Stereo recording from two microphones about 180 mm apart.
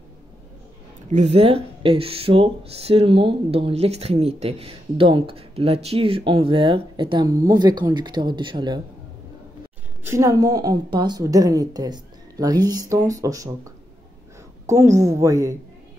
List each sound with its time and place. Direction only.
1.1 s speech: 35° right (ahead or behind)
10.0 s a woman's voice: 15° right (ahead or behind)